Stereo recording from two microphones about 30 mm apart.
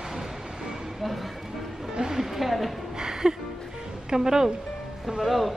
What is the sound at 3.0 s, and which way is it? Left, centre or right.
Music, right.